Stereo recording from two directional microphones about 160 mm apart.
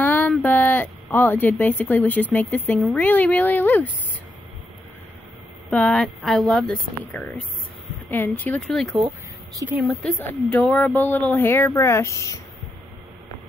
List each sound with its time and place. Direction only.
0.0 s a sound: 10° left (ahead or behind)
0.3 s speech: 10° left (ahead or behind)
5.7 s speech: 10° left (ahead or behind)
8.1 s speech: 10° left (ahead or behind)